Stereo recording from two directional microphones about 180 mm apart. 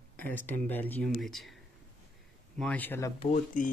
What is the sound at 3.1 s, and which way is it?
Speech, 45° left (ahead or behind).